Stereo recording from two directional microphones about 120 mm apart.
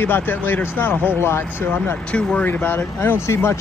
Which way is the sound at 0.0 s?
15° left (ahead or behind).